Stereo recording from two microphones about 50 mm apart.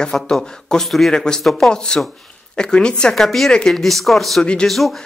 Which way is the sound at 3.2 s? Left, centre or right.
Centre.